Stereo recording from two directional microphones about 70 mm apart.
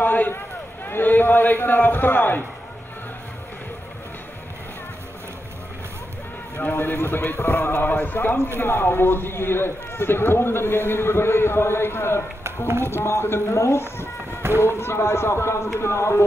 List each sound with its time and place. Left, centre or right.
0.0 s a sound: left
0.8 s a man's voice: left
6.6 s a man's voice: left